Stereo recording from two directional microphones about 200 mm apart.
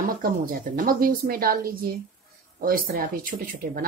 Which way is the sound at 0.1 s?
45° right (ahead or behind).